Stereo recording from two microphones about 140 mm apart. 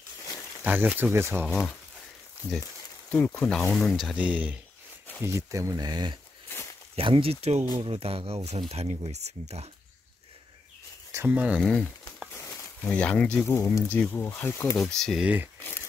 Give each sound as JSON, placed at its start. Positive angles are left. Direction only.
{"t": 0.7, "sound": "speech", "side_deg": -10}
{"t": 1.5, "sound": "speech", "side_deg": 5}
{"t": 3.1, "sound": "speech", "side_deg": 15}
{"t": 4.2, "sound": "speech", "side_deg": -10}
{"t": 5.2, "sound": "speech", "side_deg": -20}
{"t": 7.0, "sound": "speech", "side_deg": -40}
{"t": 11.1, "sound": "speech", "side_deg": -15}
{"t": 11.6, "sound": "speech", "side_deg": 5}
{"t": 12.4, "sound": "a sound", "side_deg": 20}
{"t": 12.9, "sound": "speech", "side_deg": 10}
{"t": 14.8, "sound": "speech", "side_deg": 5}
{"t": 15.2, "sound": "speech", "side_deg": -10}